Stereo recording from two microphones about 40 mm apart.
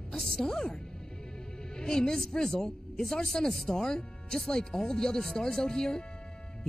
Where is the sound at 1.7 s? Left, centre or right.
Centre.